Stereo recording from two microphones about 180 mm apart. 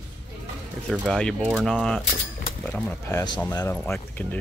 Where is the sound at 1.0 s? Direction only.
Centre (ahead or behind).